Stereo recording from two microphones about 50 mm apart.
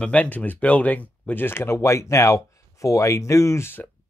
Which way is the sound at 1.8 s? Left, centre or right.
Left.